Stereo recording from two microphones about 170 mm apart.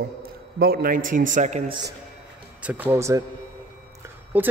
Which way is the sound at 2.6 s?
10° right (ahead or behind).